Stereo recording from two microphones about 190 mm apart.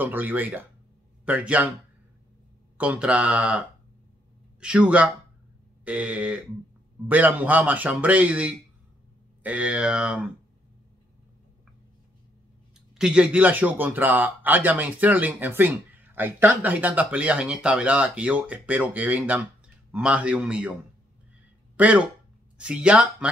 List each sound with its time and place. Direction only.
0.0 s speech: 10° right (ahead or behind)
2.8 s speech: 5° right (ahead or behind)
12.9 s speech: 5° right (ahead or behind)
21.7 s speech: 5° right (ahead or behind)